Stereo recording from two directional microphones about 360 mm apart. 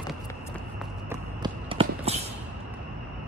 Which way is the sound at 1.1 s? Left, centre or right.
Centre.